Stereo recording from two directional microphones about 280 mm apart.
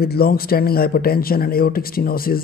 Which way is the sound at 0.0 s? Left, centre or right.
Left.